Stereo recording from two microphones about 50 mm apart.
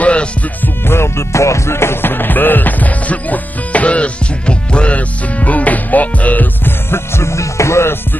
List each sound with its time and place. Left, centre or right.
0.0 s music: left
0.8 s music: left
6.9 s music: left